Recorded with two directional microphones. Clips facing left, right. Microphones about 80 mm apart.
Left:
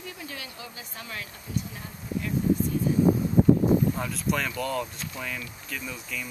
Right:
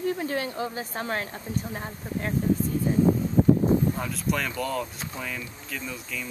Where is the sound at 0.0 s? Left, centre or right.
Right.